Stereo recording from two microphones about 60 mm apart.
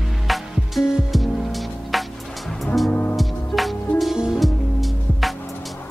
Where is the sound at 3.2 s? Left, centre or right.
Centre.